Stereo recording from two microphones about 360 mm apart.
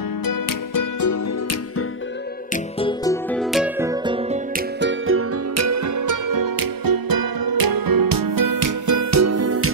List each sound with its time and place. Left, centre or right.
0.2 s music: left
2.5 s music: centre
4.7 s music: right